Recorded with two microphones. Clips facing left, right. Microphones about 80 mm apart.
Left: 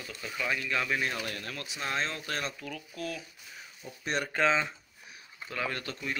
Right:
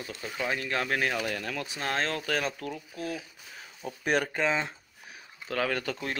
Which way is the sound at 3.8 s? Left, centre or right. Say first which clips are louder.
Right 6 dB; right.